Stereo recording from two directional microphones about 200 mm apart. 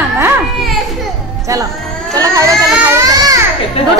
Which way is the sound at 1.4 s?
15° right (ahead or behind).